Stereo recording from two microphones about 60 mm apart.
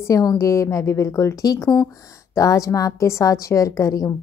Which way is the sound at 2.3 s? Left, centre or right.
Left.